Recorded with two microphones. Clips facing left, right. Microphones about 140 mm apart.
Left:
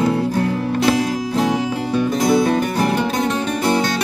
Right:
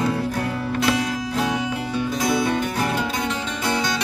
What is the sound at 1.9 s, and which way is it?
Music, 50° left (ahead or behind).